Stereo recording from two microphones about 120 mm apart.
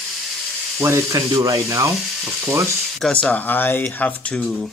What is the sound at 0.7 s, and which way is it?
Speech, 25° right (ahead or behind).